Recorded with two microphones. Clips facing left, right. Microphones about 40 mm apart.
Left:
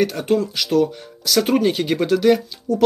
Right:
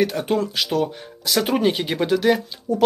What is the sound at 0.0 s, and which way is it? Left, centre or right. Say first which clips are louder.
Speech: left 2 dB; centre.